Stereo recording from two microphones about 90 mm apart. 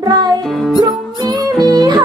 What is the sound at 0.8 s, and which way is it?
Music, 50° right (ahead or behind).